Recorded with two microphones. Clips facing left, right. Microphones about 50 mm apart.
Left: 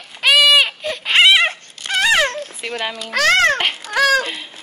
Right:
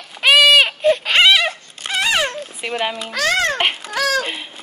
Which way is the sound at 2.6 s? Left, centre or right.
Centre.